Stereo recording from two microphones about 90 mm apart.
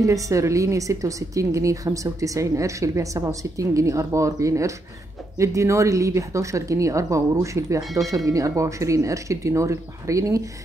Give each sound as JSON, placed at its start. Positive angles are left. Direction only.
{"t": 0.0, "sound": "a woman's voice", "side_deg": -35}